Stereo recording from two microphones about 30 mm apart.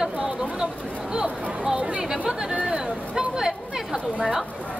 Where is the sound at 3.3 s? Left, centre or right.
Centre.